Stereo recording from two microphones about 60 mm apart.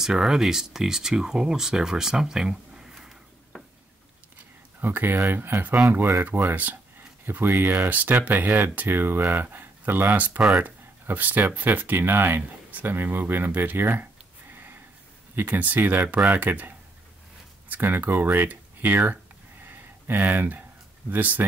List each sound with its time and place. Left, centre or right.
0.0 s speech: centre
4.7 s speech: right
15.3 s speech: right
19.6 s a sound: right
20.2 s speech: right